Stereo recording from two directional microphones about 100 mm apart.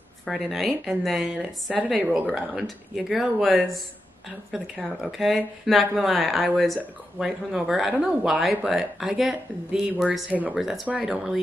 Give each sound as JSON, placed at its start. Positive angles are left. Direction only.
{"t": 0.2, "sound": "speech", "side_deg": 0}
{"t": 2.0, "sound": "speech", "side_deg": -15}
{"t": 2.3, "sound": "speech", "side_deg": 0}